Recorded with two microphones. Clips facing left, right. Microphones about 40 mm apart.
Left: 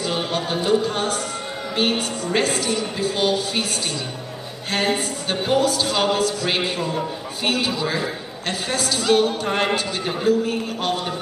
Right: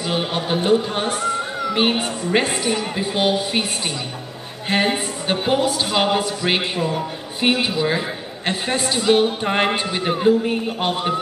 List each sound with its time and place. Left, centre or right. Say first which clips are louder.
0.0 s a man's voice: right 1 dB; centre
4.6 s a man's voice: right 2 dB; right